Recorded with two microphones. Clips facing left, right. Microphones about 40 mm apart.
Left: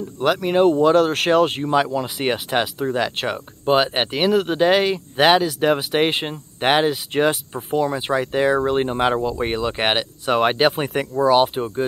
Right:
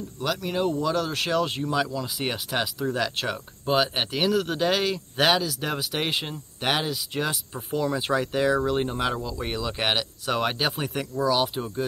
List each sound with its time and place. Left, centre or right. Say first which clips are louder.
0.2 s speech: left 10 dB; left
7.5 s speech: left 5 dB; left